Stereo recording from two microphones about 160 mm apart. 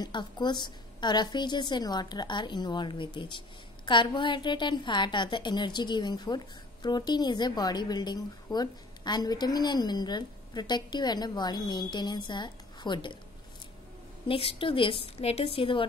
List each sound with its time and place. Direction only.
0.0 s a woman's voice: 30° left (ahead or behind)
14.2 s a woman's voice: 35° left (ahead or behind)